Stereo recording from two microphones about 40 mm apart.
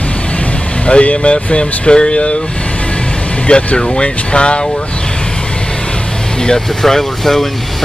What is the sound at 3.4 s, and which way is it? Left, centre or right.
Speech, left.